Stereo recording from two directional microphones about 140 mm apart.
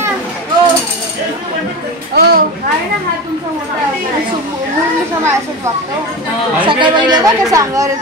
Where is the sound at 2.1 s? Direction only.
90° right.